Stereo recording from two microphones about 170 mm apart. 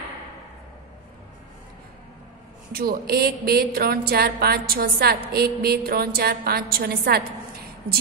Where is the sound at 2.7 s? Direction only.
60° right (ahead or behind).